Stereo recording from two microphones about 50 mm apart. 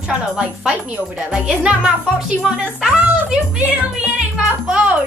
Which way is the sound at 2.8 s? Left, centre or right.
Centre.